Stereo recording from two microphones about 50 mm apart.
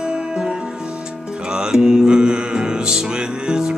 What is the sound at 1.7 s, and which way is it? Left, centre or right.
Music, centre.